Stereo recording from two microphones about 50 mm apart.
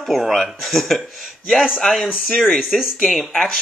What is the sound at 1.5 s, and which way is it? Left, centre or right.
Speech, centre.